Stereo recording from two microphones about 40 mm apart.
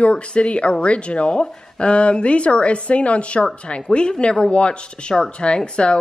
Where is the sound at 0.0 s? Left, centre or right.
Left.